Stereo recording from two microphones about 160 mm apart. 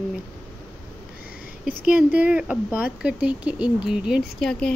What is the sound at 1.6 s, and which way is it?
Speech, 5° right (ahead or behind).